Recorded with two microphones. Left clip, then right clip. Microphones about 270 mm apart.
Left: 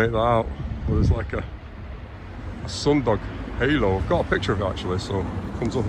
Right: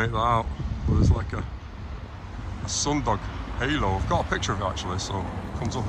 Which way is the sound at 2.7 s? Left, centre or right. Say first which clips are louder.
Left 4 dB; centre.